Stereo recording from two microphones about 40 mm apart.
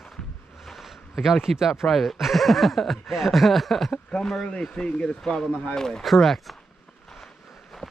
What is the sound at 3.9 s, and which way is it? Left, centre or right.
Speech, left.